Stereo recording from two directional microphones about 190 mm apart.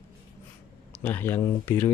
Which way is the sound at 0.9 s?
10° left (ahead or behind).